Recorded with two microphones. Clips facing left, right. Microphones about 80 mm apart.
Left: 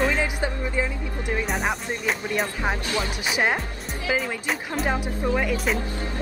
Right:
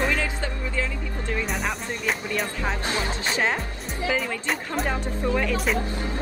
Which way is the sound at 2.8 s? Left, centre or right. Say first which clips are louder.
Even; right.